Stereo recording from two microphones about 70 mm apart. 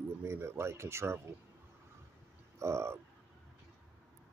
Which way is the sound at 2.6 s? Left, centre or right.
Right.